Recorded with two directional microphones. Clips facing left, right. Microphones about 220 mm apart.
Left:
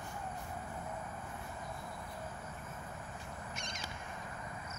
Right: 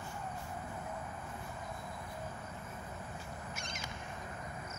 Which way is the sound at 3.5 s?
5° right (ahead or behind).